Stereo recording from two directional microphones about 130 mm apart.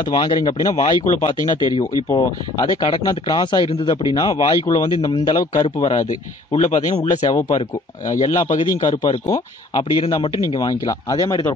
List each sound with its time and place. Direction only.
0.0 s a man's voice: 35° left (ahead or behind)
1.0 s speech: 65° left (ahead or behind)
2.0 s speech: 30° left (ahead or behind)
5.9 s speech: 50° left (ahead or behind)
7.2 s a man's voice: 25° left (ahead or behind)
8.8 s speech: 40° left (ahead or behind)
9.3 s a man's voice: 30° left (ahead or behind)